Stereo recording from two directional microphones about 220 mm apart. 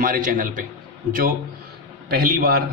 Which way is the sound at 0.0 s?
40° right (ahead or behind).